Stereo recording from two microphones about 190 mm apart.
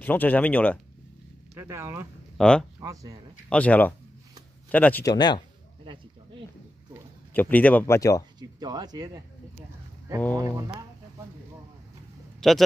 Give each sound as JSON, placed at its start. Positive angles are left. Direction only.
{"t": 0.0, "sound": "speech", "side_deg": 10}
{"t": 1.5, "sound": "speech", "side_deg": -15}
{"t": 2.3, "sound": "speech", "side_deg": 5}
{"t": 2.8, "sound": "speech", "side_deg": -20}
{"t": 3.4, "sound": "speech", "side_deg": 5}
{"t": 5.0, "sound": "speech", "side_deg": 20}
{"t": 7.3, "sound": "speech", "side_deg": 10}
{"t": 8.4, "sound": "a sound", "side_deg": -20}
{"t": 10.3, "sound": "speech", "side_deg": -20}
{"t": 12.4, "sound": "speech", "side_deg": 0}